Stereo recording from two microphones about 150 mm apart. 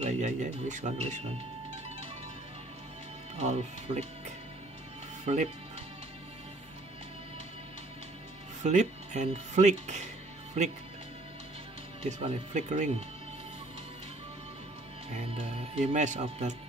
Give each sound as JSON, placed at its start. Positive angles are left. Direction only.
{"t": 0.0, "sound": "speech", "side_deg": -55}
{"t": 3.3, "sound": "speech", "side_deg": -50}
{"t": 5.2, "sound": "speech", "side_deg": -50}
{"t": 8.6, "sound": "speech", "side_deg": -50}
{"t": 12.0, "sound": "speech", "side_deg": -40}
{"t": 15.1, "sound": "speech", "side_deg": -50}